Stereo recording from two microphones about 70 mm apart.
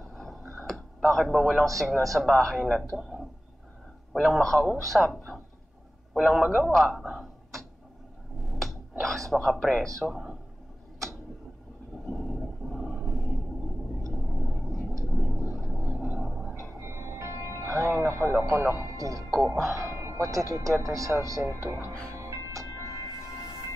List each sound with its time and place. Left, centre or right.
0.1 s tick-tock: centre
1.0 s speech: centre
6.1 s a man's voice: centre
6.7 s speech: centre
8.4 s a sound: centre
10.0 s speech: centre
12.1 s whale vocalization: centre
14.1 s vehicle: centre
15.0 s a sound: centre
16.8 s music: right
18.8 s speech: right
22.1 s music: right